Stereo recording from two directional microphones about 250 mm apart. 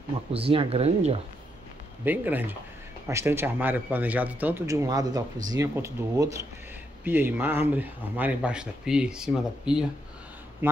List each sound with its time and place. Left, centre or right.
0.3 s speech: right
2.0 s speech: centre